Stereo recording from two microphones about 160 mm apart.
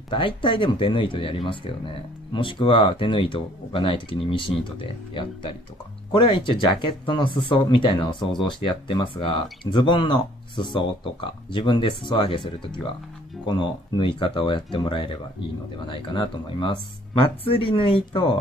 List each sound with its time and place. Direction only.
0.1 s speech: 30° left (ahead or behind)